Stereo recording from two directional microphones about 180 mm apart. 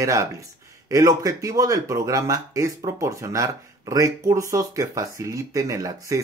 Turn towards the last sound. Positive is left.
turn(degrees=-20)  # may be behind; listen again after turning